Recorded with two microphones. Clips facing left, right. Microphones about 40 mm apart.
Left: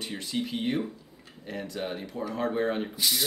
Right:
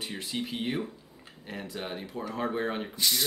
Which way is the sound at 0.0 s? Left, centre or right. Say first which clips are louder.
Left 2 dB; centre.